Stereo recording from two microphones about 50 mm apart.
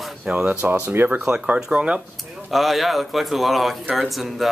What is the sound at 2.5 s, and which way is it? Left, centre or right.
Speech, centre.